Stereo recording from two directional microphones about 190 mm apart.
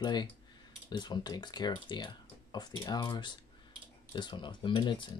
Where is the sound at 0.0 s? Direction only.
20° left (ahead or behind).